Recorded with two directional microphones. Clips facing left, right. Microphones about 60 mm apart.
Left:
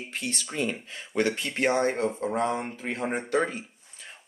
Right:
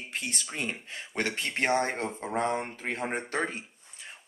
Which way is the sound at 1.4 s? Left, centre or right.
Right.